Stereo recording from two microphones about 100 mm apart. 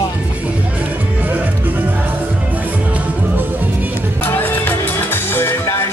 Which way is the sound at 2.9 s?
20° right (ahead or behind).